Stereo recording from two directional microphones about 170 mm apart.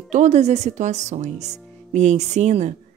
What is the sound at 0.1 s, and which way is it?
A woman's voice, 40° right (ahead or behind).